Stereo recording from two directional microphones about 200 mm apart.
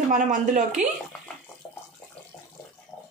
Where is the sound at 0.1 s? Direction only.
40° right (ahead or behind).